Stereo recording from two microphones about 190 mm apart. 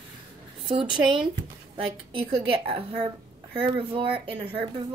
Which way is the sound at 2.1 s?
30° right (ahead or behind).